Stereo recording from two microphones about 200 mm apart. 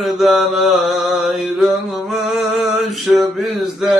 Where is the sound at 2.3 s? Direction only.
Centre (ahead or behind).